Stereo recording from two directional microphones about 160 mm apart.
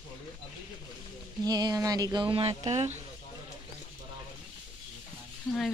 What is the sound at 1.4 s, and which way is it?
Speech, 25° right (ahead or behind).